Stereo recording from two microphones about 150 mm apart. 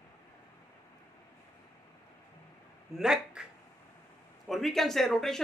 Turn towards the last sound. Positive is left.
turn(degrees=0)  # may be behind; listen again after turning